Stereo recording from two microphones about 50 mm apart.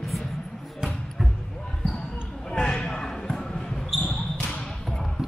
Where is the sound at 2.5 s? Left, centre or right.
Centre.